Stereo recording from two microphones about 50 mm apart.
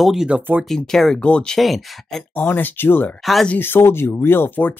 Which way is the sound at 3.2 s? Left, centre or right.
Centre.